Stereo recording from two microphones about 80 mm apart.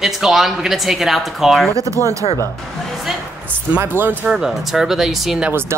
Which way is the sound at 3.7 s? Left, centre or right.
Right.